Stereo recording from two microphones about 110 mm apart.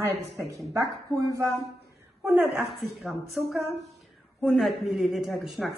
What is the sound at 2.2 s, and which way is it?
Speech, 15° right (ahead or behind).